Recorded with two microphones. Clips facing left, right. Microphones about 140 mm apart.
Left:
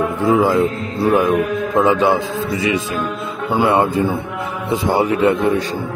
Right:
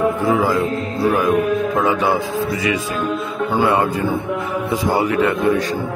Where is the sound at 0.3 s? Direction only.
25° left (ahead or behind).